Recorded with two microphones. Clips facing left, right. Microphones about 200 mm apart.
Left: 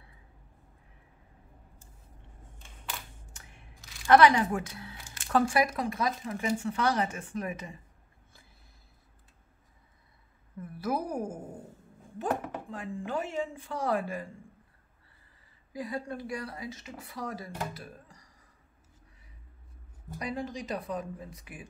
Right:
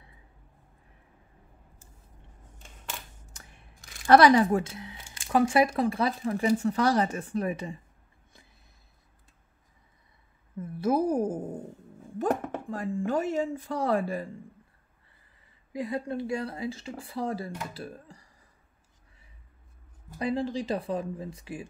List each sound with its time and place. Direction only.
2.9 s single-lens reflex camera: 45° right (ahead or behind)
4.1 s speech: 35° right (ahead or behind)
4.7 s a sound: 20° right (ahead or behind)
5.5 s speech: 30° right (ahead or behind)
10.6 s a sound: 25° right (ahead or behind)
12.7 s speech: 45° right (ahead or behind)
15.7 s speech: 25° right (ahead or behind)
20.2 s speech: 30° right (ahead or behind)